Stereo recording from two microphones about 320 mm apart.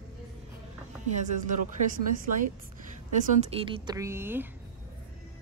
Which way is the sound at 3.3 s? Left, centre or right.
Centre.